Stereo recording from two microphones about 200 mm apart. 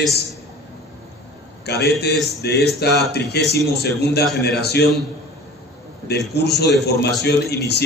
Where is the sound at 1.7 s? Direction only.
55° left (ahead or behind).